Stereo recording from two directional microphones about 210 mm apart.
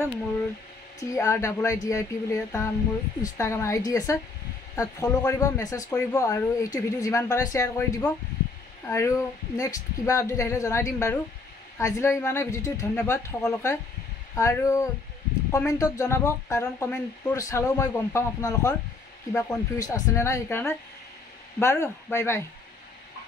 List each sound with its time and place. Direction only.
1.0 s speech: 15° left (ahead or behind)